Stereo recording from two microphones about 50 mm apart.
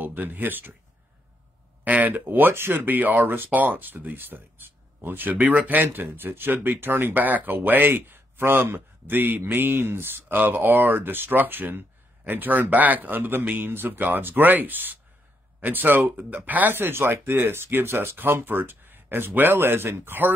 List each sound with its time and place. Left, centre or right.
0.0 s speech: right
1.9 s speech: right
5.4 s speech: right
10.3 s speech: right